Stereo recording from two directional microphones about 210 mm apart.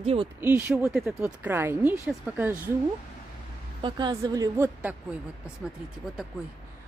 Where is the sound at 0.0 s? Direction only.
30° right (ahead or behind).